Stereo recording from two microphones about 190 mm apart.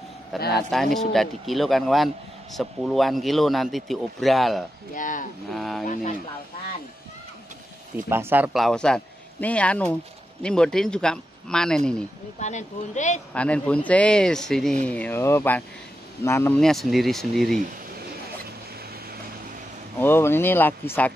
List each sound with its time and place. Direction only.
0.5 s a man's voice: centre (ahead or behind)
4.9 s speech: 45° left (ahead or behind)
5.5 s a man's voice: centre (ahead or behind)
8.1 s speech: 10° right (ahead or behind)
8.5 s a man's voice: centre (ahead or behind)
12.4 s speech: 40° left (ahead or behind)
13.3 s a man's voice: 5° left (ahead or behind)
20.0 s speech: 10° left (ahead or behind)